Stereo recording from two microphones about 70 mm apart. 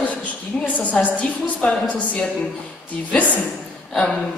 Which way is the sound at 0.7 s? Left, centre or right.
Left.